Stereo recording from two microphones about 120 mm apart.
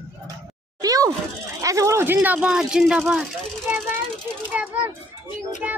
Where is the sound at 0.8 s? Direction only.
30° right (ahead or behind).